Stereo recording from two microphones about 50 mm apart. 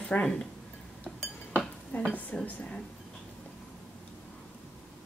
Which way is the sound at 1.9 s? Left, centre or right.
Left.